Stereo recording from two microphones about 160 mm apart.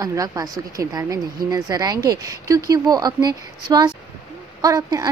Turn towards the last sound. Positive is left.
turn(degrees=-20)  # may be behind; listen again after turning